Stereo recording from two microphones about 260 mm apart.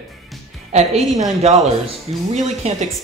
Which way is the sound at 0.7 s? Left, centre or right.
Right.